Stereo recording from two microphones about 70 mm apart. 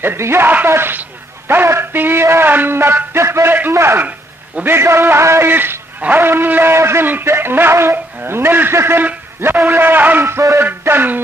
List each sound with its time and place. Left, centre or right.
0.0 s a man's voice: right
0.7 s a sound: right
1.5 s a man's voice: right